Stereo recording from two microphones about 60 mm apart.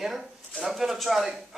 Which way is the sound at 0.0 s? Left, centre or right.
Centre.